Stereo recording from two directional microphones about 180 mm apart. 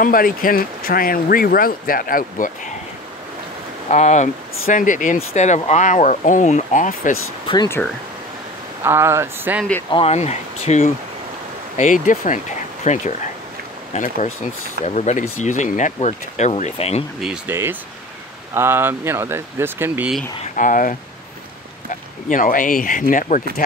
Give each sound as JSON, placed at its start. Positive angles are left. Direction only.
{"t": 0.0, "sound": "speech", "side_deg": 50}
{"t": 3.9, "sound": "speech", "side_deg": 40}
{"t": 7.4, "sound": "speech", "side_deg": 20}
{"t": 8.8, "sound": "speech", "side_deg": -15}
{"t": 9.8, "sound": "speech", "side_deg": 30}
{"t": 17.2, "sound": "speech", "side_deg": -10}
{"t": 20.4, "sound": "speech", "side_deg": 45}